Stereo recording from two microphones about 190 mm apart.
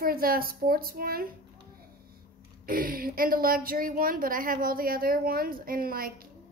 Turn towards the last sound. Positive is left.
turn(degrees=-50)  # may be behind; listen again after turning